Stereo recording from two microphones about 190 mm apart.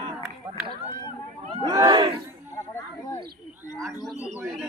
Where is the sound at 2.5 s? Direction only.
15° left (ahead or behind).